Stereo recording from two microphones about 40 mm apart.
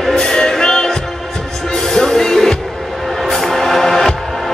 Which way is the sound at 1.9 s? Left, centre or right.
Centre.